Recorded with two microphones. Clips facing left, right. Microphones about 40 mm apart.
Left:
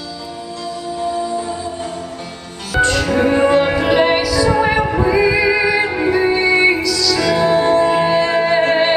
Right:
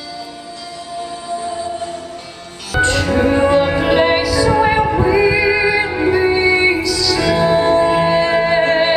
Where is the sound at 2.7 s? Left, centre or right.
Centre.